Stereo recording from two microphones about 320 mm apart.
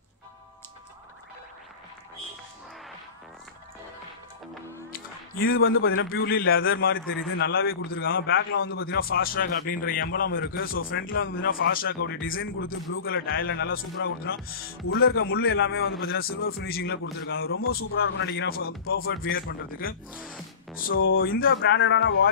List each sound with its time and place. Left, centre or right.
4.9 s a man's voice: left